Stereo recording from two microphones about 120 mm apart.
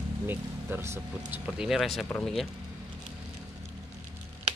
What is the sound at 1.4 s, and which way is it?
Speech, 5° right (ahead or behind).